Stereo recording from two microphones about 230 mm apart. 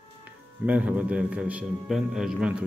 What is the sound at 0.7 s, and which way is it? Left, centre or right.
A man's voice, centre.